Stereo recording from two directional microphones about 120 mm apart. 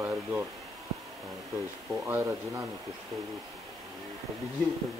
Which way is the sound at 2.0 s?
20° right (ahead or behind).